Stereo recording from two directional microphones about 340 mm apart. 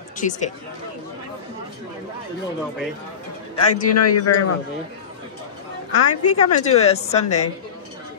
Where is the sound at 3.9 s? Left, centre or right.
Left.